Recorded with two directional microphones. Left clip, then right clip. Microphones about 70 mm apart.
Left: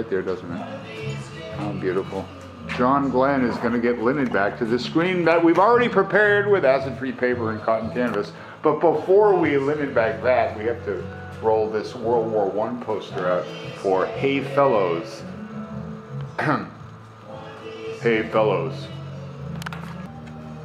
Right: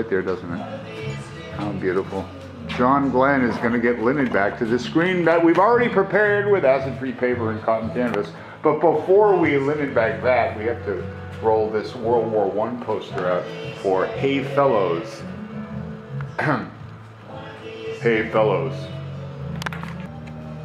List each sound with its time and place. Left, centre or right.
0.1 s speech: right
3.1 s speech: right
3.3 s a man's voice: left
3.6 s speech: right
4.9 s speech: centre
5.2 s a man's voice: centre
5.7 s a man's voice: left
12.3 s a man's voice: centre; by 15.0 s left
16.3 s speech: left
18.0 s speech: left